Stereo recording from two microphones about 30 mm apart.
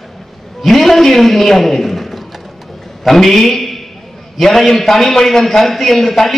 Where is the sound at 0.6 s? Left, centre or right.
Centre.